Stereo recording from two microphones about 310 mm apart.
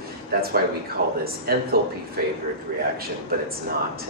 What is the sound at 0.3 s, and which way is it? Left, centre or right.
Speech, right.